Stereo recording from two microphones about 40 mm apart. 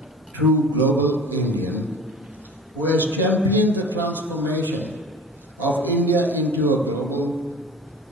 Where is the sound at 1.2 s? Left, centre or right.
Left.